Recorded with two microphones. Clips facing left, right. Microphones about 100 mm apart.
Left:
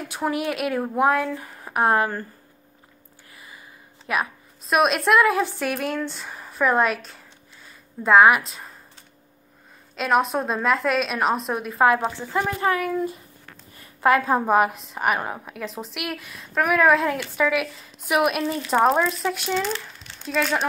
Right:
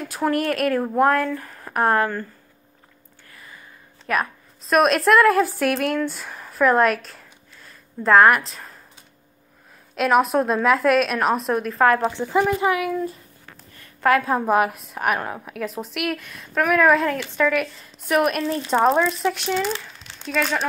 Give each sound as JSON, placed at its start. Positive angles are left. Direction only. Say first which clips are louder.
{"t": 0.1, "sound": "speech", "louder": "right 4 dB", "side_deg": 5}
{"t": 2.0, "sound": "speech", "louder": "right 1 dB", "side_deg": 25}
{"t": 3.3, "sound": "a woman's voice", "louder": "right 1 dB", "side_deg": 10}
{"t": 9.9, "sound": "a woman's voice", "louder": "right 3 dB", "side_deg": 0}
{"t": 12.1, "sound": "speech", "louder": "right 5 dB", "side_deg": -20}
{"t": 13.7, "sound": "a sound", "louder": "even", "side_deg": 0}
{"t": 14.5, "sound": "a woman's voice", "louder": "right 2 dB", "side_deg": 0}
{"t": 19.5, "sound": "speech", "louder": "right 1 dB", "side_deg": -10}